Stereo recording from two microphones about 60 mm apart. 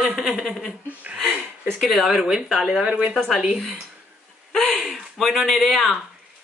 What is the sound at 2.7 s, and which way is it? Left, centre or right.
Speech, centre.